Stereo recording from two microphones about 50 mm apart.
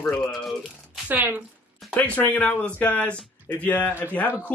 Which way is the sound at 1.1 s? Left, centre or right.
Right.